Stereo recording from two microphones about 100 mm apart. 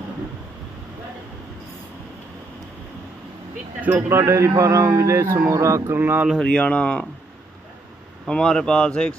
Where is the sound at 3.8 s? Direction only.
20° right (ahead or behind).